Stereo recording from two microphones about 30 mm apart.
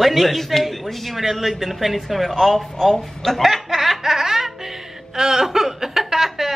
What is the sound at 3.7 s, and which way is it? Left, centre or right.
Laughter, centre.